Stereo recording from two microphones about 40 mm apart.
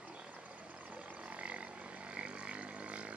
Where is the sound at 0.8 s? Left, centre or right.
Right.